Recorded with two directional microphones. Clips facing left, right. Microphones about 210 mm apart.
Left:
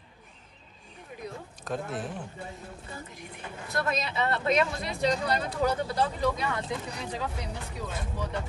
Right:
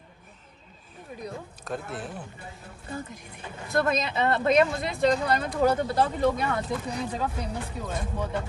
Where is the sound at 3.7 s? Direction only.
50° right (ahead or behind).